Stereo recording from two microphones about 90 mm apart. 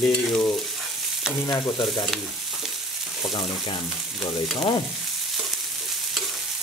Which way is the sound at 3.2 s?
60° left (ahead or behind).